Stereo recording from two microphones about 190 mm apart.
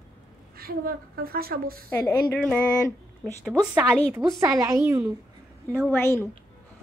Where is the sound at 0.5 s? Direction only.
50° right (ahead or behind).